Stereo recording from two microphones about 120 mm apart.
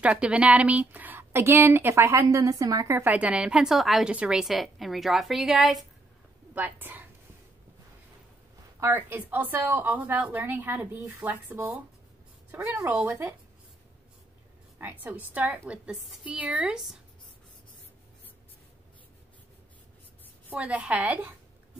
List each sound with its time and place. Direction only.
0.0 s a woman's voice: 10° right (ahead or behind)
6.5 s a woman's voice: 15° right (ahead or behind)
8.7 s a woman's voice: 15° right (ahead or behind)
14.8 s a woman's voice: 15° right (ahead or behind)
20.4 s a woman's voice: 10° right (ahead or behind)